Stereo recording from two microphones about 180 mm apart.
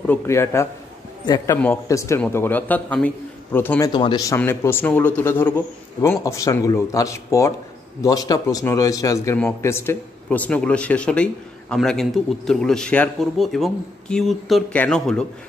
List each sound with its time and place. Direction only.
0.0 s a man's voice: 15° left (ahead or behind)
3.9 s a man's voice: 25° left (ahead or behind); by 15.2 s 5° left (ahead or behind)